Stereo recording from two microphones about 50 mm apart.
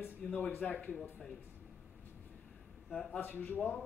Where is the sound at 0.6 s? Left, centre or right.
Left.